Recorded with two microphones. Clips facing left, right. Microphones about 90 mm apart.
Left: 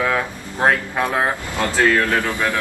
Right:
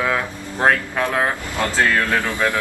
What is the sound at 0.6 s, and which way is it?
A man's voice, 10° left (ahead or behind).